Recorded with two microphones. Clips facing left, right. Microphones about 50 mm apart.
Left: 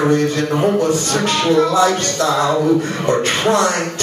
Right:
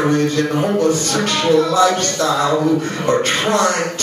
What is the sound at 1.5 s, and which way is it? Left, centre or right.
Music, left.